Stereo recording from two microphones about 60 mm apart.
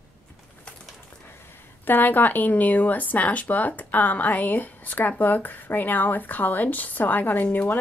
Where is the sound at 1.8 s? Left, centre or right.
Left.